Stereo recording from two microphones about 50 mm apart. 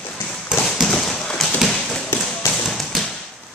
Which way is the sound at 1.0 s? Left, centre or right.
Centre.